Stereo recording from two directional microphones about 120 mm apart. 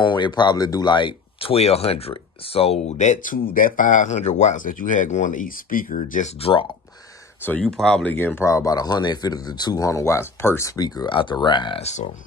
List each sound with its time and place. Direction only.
0.0 s speech: 40° left (ahead or behind); by 6.3 s 90° left
6.4 s speech: 45° left (ahead or behind)
7.4 s speech: 10° left (ahead or behind)
10.8 s speech: 35° left (ahead or behind)
11.8 s speech: 70° left (ahead or behind)